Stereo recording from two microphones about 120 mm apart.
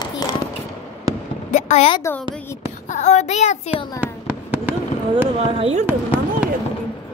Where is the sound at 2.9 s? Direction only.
75° left (ahead or behind).